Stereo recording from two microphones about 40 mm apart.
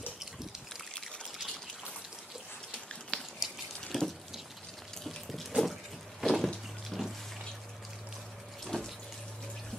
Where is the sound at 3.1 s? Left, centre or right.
Left.